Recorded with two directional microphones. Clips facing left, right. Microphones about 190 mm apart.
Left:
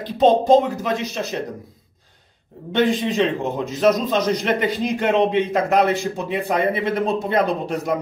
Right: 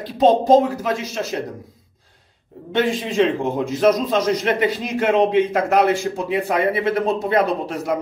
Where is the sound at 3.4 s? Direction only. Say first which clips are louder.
Right 1 dB; 10° right (ahead or behind).